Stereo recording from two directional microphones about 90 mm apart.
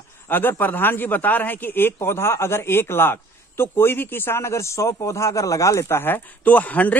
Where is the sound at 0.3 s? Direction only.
20° left (ahead or behind).